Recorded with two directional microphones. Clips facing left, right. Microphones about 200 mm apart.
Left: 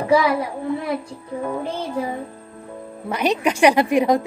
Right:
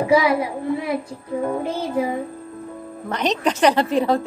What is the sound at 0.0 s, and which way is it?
Speech, 10° right (ahead or behind).